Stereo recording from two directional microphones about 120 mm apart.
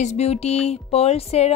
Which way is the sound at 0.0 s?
65° left (ahead or behind).